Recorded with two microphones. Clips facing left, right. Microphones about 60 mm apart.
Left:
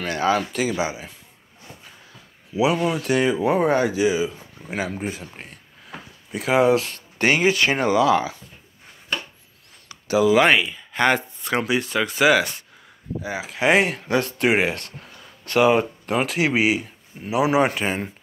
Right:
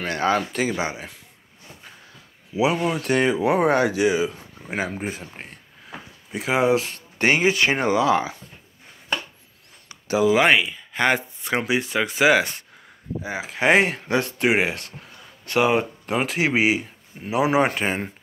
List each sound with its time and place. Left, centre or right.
0.0 s speech: right
2.5 s speech: right
3.0 s speech: right
3.4 s speech: right
4.6 s a sound: right
6.4 s speech: centre
9.8 s a sound: right
10.3 s speech: centre; by 14.1 s right
14.1 s speech: centre
16.3 s speech: right